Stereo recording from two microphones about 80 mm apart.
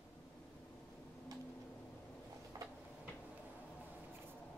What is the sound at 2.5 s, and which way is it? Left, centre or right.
Tick-tock, right.